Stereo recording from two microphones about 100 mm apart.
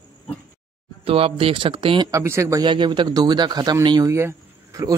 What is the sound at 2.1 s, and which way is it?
Speech, 30° right (ahead or behind).